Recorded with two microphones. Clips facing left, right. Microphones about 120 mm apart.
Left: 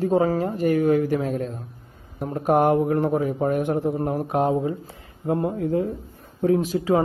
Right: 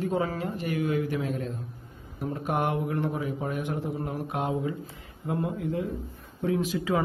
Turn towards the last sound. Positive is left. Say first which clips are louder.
# left 6 dB
turn(degrees=40)  # may be behind; listen again after turning